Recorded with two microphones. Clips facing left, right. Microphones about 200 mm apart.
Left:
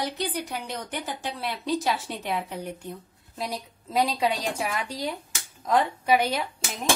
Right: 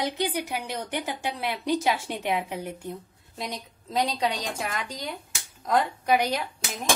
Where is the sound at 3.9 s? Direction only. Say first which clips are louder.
Left 2 dB; 5° left (ahead or behind).